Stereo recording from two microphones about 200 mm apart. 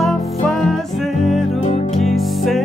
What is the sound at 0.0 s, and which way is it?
Music, centre (ahead or behind).